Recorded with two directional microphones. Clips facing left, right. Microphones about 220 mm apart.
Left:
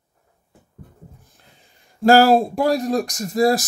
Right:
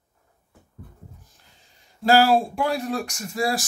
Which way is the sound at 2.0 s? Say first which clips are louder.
Left 5 dB; 45° left (ahead or behind).